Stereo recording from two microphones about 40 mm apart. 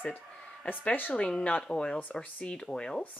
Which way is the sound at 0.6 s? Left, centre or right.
Left.